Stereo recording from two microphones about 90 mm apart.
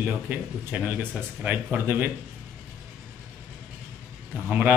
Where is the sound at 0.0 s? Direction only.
20° right (ahead or behind).